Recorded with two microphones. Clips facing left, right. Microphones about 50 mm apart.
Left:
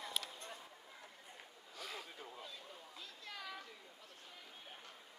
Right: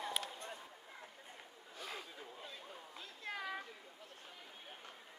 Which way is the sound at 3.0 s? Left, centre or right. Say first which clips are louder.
Right 6 dB; right.